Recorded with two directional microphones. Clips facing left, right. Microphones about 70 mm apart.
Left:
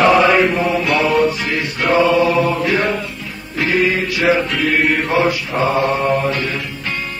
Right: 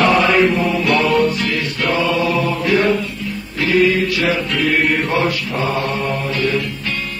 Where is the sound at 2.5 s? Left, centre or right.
Centre.